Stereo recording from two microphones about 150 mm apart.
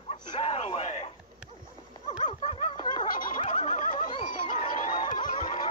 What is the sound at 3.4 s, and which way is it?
Neigh, 55° left (ahead or behind).